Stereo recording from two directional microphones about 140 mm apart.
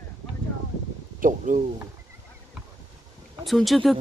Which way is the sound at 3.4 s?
Centre (ahead or behind).